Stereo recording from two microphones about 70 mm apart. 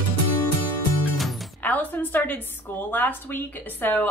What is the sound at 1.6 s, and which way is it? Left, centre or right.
A woman's voice, left.